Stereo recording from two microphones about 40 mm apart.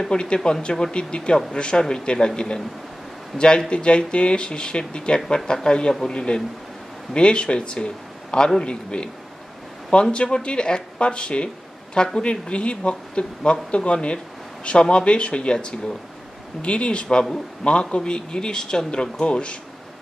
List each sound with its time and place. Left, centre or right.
0.0 s speech: left
10.1 s speech: left